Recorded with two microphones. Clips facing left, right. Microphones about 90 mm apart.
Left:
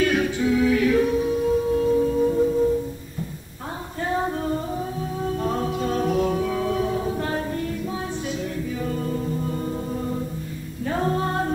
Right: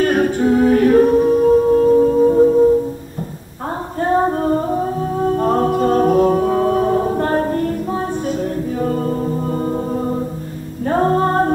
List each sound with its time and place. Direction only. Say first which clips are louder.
0.0 s music: right 6 dB; 45° right (ahead or behind)
4.0 s music: right 9 dB; 45° right (ahead or behind)